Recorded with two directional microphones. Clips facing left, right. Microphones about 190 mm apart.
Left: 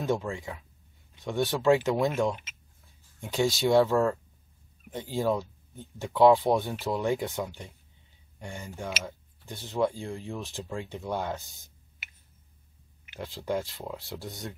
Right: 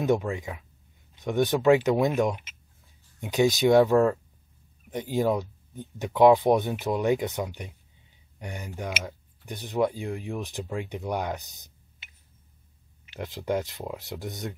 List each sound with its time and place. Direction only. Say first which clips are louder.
0.0 s speech: right 4 dB; 20° right (ahead or behind)